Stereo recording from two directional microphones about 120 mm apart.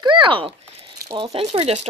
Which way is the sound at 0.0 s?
40° right (ahead or behind).